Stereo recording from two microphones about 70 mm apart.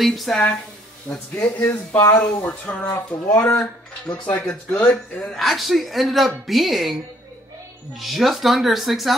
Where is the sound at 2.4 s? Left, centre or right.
Left.